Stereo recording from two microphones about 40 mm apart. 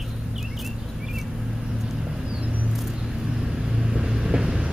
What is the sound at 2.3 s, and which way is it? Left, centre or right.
Vehicle, right.